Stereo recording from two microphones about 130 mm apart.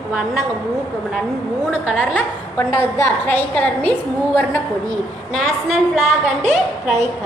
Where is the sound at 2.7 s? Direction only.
20° left (ahead or behind).